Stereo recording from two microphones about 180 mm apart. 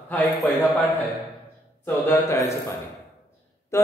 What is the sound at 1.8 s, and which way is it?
Speech, 15° left (ahead or behind).